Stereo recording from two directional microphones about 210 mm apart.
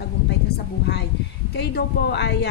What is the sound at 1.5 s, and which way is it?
Speech, 50° left (ahead or behind).